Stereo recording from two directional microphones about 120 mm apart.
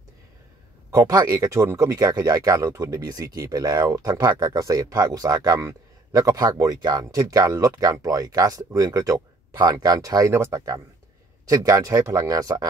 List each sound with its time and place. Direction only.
0.9 s speech: 30° right (ahead or behind)